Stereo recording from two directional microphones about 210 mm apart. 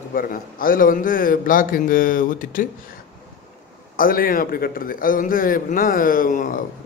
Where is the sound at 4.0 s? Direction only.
45° left (ahead or behind).